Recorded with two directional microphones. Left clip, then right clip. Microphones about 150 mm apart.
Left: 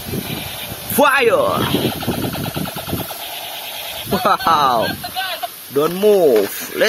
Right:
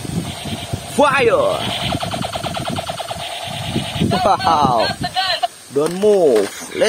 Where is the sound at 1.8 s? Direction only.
35° right (ahead or behind).